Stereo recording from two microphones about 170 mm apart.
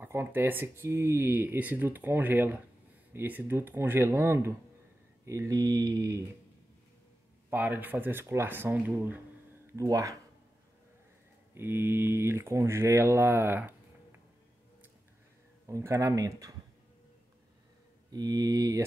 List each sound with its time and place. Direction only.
0.0 s speech: 15° right (ahead or behind)
5.2 s a sound: 15° right (ahead or behind)
7.4 s speech: 10° right (ahead or behind)
11.5 s speech: 15° right (ahead or behind)
15.6 s speech: 20° right (ahead or behind)
18.1 s a sound: 20° right (ahead or behind)